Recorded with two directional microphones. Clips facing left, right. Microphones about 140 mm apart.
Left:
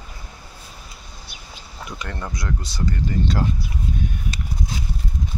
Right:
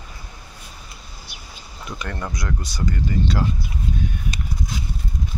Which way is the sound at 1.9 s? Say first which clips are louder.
Right 2 dB; 20° left (ahead or behind).